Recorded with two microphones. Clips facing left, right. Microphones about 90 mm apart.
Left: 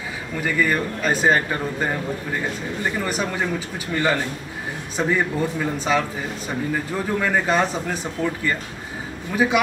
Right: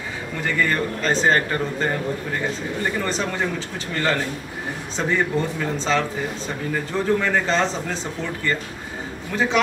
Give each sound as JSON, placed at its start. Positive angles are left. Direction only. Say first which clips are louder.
{"t": 0.4, "sound": "speech", "louder": "left 1 dB", "side_deg": 10}